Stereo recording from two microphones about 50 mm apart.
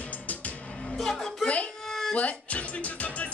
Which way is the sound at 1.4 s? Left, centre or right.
Left.